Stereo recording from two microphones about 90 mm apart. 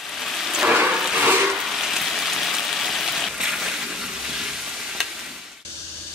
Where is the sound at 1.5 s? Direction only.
5° right (ahead or behind).